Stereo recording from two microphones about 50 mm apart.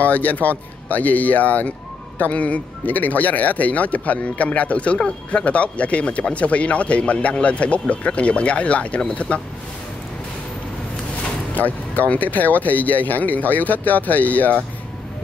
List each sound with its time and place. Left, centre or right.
0.0 s a man's voice: left
11.5 s speech: left